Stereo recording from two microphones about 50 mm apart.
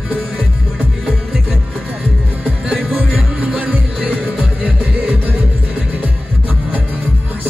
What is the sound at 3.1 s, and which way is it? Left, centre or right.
Music, right.